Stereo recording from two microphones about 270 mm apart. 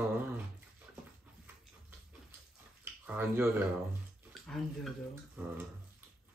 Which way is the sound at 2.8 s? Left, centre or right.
Centre.